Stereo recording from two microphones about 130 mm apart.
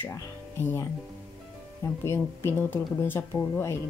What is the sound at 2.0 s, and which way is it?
Speech, 20° left (ahead or behind).